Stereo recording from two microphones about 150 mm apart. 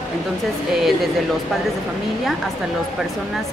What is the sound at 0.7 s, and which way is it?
Speech, centre (ahead or behind).